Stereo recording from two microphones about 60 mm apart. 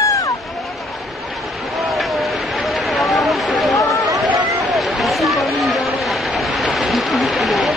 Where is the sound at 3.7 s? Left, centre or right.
Left.